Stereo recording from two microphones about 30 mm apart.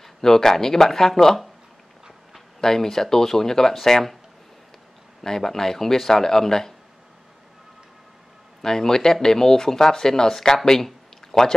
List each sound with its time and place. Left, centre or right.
0.0 s speech: centre
2.6 s speech: centre
5.2 s speech: centre
8.6 s speech: centre